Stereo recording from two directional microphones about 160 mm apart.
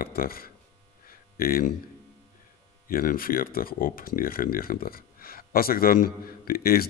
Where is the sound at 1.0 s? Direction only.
65° left (ahead or behind).